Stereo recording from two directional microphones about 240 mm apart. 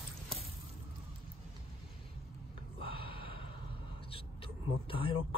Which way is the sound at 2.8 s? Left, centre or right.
Left.